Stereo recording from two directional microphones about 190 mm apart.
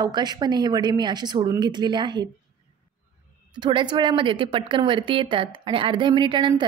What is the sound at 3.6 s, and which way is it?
A woman's voice, 25° right (ahead or behind).